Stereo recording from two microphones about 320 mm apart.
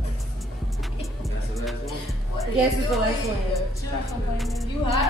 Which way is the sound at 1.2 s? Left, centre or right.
Centre.